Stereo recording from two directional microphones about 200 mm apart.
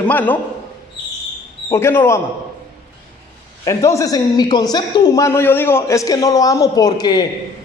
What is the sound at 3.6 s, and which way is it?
A woman's voice, 15° left (ahead or behind).